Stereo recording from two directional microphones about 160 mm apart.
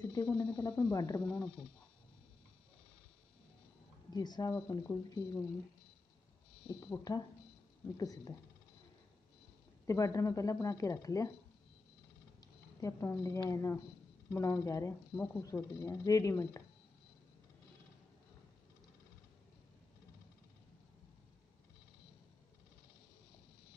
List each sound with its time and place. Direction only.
0.1 s speech: 20° left (ahead or behind)
4.1 s speech: 25° left (ahead or behind)
6.7 s speech: 20° left (ahead or behind)
9.8 s speech: 20° left (ahead or behind)
12.4 s speech: 20° left (ahead or behind)